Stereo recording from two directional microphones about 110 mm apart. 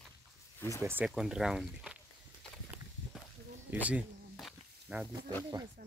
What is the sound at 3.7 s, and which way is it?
Speech, 15° right (ahead or behind).